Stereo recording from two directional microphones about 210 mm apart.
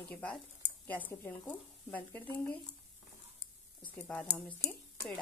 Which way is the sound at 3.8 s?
5° left (ahead or behind).